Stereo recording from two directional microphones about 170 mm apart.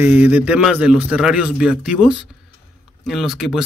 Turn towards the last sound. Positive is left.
turn(degrees=0)  # may be behind; listen again after turning